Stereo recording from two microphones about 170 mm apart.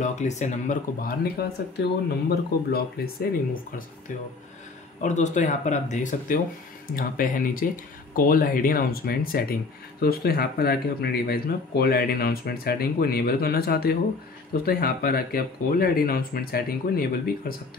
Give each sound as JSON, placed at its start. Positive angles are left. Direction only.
{"t": 0.0, "sound": "speech", "side_deg": 45}
{"t": 1.2, "sound": "speech", "side_deg": 70}
{"t": 5.0, "sound": "speech", "side_deg": 45}